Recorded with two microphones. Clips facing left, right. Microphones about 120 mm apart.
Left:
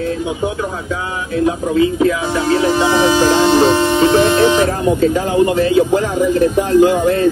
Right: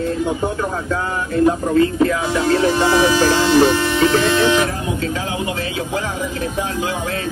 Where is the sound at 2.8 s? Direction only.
20° left (ahead or behind).